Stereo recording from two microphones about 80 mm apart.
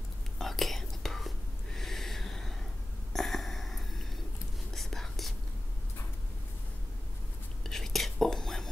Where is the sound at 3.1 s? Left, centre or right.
Centre.